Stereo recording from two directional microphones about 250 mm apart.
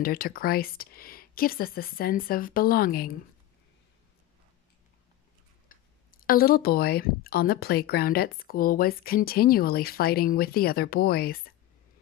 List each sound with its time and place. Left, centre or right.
0.0 s speech: left
5.7 s speech: left